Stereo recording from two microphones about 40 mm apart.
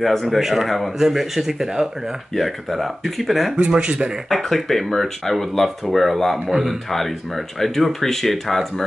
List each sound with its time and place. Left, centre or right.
0.0 s speech: centre
2.3 s speech: centre
3.5 s speech: right
4.3 s speech: centre
6.5 s speech: centre
6.9 s speech: centre